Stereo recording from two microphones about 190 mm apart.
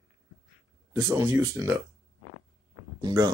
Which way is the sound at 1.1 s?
15° right (ahead or behind).